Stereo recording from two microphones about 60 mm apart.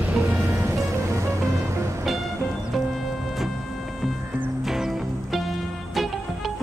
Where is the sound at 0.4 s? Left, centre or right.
Right.